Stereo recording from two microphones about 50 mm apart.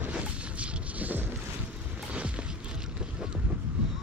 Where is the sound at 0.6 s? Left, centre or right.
Right.